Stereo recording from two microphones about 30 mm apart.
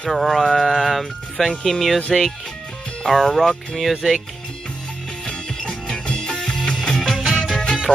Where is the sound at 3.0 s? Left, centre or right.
Centre.